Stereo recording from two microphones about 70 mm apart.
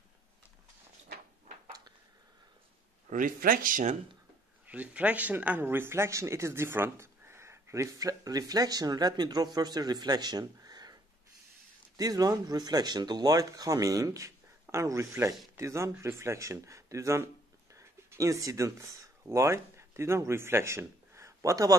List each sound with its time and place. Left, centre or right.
4.6 s speech: right
12.0 s speech: right